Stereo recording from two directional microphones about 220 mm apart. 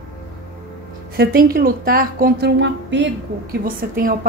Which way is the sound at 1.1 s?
45° right (ahead or behind).